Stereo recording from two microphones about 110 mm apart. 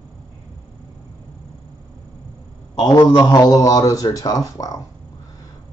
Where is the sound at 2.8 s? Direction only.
35° left (ahead or behind).